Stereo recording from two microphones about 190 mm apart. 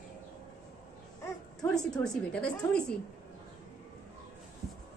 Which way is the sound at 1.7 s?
5° left (ahead or behind).